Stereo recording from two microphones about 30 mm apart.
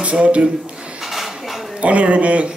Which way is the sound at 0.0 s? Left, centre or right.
Right.